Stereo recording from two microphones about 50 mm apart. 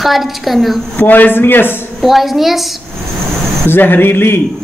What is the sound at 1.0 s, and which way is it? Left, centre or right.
Speech, left.